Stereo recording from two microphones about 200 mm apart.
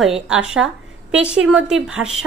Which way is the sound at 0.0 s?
5° right (ahead or behind).